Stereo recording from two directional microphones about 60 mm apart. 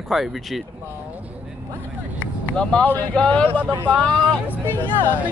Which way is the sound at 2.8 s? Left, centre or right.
Left.